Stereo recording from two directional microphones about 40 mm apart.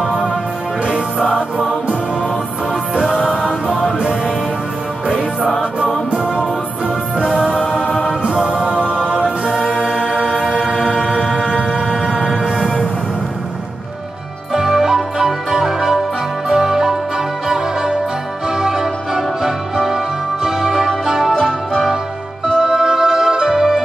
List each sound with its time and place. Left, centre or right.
0.1 s music: right
1.2 s music: centre
2.7 s music: right
3.3 s music: centre
3.6 s music: right
8.1 s music: right
10.8 s music: centre
14.5 s music: centre